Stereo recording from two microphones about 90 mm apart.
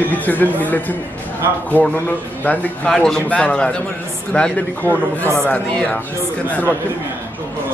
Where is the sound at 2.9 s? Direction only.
5° left (ahead or behind).